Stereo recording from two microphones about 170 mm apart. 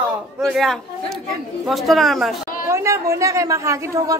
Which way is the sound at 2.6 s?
15° right (ahead or behind).